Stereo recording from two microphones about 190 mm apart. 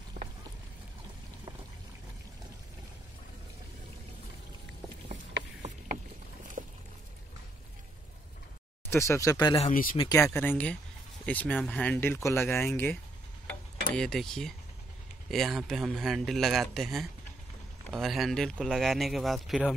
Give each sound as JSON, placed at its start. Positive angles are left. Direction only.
{"t": 8.9, "sound": "speech", "side_deg": 15}
{"t": 9.6, "sound": "speech", "side_deg": 45}
{"t": 9.9, "sound": "speech", "side_deg": 20}
{"t": 13.9, "sound": "a man's voice", "side_deg": 0}